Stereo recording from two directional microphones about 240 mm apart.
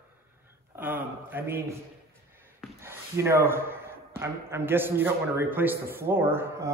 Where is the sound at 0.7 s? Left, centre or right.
Centre.